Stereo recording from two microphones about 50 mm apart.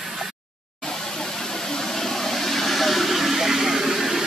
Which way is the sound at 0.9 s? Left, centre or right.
Centre.